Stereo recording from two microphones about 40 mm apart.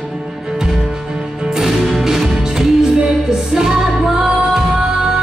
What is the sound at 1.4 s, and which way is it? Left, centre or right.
Music, centre.